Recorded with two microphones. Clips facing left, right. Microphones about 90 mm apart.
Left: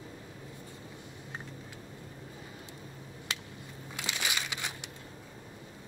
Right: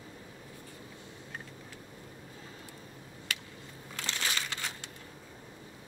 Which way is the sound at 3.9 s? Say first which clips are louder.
Even; 15° left (ahead or behind).